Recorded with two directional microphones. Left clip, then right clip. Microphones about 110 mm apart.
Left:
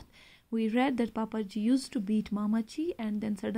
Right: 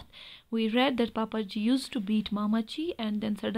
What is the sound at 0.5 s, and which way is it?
Speech, 10° right (ahead or behind).